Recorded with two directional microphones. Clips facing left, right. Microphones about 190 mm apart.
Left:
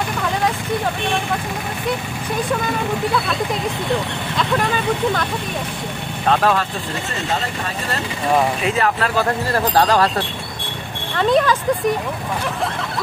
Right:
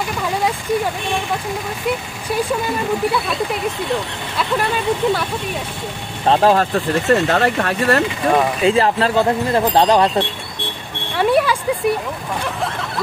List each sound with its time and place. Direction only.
4.4 s speech: 5° right (ahead or behind)
6.2 s speech: 30° right (ahead or behind)
7.1 s speech: 65° right (ahead or behind)
8.6 s speech: 30° right (ahead or behind)
11.1 s speech: 10° right (ahead or behind)